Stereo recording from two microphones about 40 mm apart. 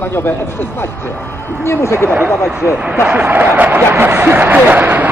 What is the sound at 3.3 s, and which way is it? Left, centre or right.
Speech, right.